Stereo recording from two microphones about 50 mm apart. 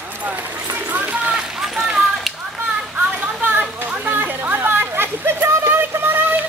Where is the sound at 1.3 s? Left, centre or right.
Centre.